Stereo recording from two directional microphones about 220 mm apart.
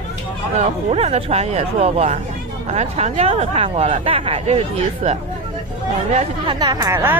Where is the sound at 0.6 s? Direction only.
30° right (ahead or behind).